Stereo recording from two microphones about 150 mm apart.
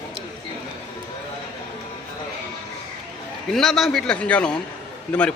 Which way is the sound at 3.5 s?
Centre (ahead or behind).